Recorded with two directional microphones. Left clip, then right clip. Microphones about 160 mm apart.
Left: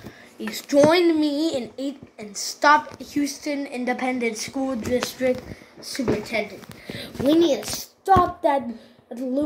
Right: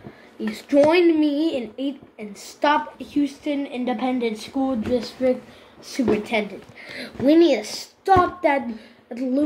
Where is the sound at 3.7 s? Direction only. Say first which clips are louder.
Even; 45° left (ahead or behind).